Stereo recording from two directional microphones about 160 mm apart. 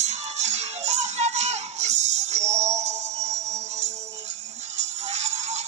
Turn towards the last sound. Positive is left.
turn(degrees=-45)  # may be behind; listen again after turning